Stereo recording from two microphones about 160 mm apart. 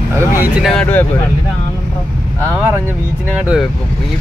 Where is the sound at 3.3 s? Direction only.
5° right (ahead or behind).